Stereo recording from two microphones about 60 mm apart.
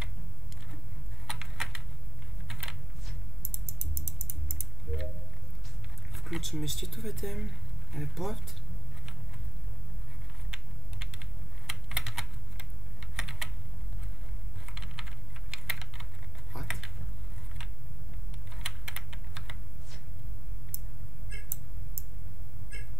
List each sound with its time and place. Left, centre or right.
1.2 s typing: centre
3.5 s typing: left
6.1 s a sound: centre
6.6 s speech: centre
10.5 s typing: centre
14.7 s typing: centre
16.5 s a sound: centre
18.6 s typing: centre